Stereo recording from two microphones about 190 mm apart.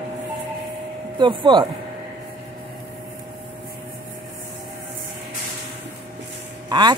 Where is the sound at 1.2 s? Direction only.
25° right (ahead or behind).